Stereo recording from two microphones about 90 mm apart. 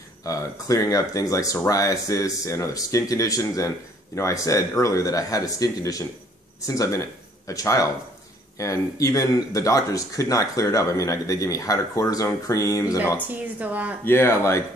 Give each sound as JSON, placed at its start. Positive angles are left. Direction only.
{"t": 0.2, "sound": "speech", "side_deg": 40}
{"t": 13.3, "sound": "speech", "side_deg": -15}
{"t": 14.0, "sound": "speech", "side_deg": 30}